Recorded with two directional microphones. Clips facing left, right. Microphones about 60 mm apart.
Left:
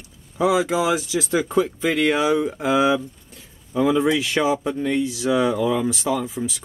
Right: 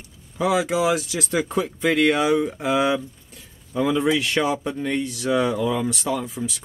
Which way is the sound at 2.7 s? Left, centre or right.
Centre.